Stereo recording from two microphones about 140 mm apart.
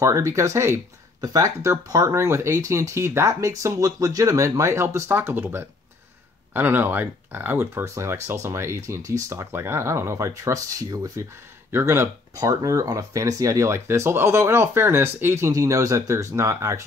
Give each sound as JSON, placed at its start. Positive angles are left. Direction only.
{"t": 0.0, "sound": "speech", "side_deg": -20}